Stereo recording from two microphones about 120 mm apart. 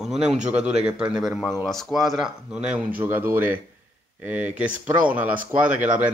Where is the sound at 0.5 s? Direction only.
10° right (ahead or behind).